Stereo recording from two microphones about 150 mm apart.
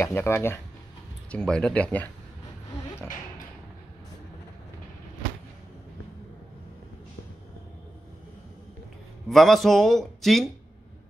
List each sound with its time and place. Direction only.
0.0 s speech: 15° left (ahead or behind)
1.3 s speech: 5° left (ahead or behind)
9.3 s a man's voice: centre (ahead or behind)